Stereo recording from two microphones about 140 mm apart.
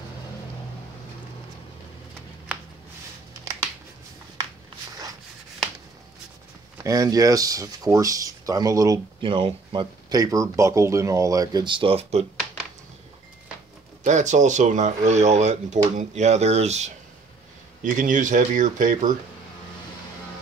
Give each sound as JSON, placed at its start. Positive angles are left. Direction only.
{"t": 6.8, "sound": "speech", "side_deg": -25}
{"t": 9.2, "sound": "speech", "side_deg": -35}
{"t": 14.0, "sound": "speech", "side_deg": -60}
{"t": 17.8, "sound": "speech", "side_deg": -65}